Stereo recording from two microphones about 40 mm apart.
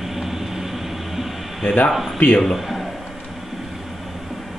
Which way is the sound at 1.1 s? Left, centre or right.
Centre.